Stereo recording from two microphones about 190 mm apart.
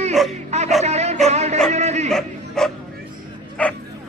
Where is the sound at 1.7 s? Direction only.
35° right (ahead or behind).